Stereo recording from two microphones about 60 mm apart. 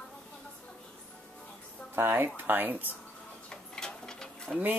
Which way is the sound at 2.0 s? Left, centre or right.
Right.